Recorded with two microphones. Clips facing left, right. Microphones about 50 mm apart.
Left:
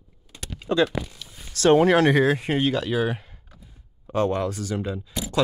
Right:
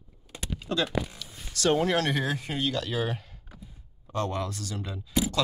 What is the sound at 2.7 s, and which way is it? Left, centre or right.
Speech, centre.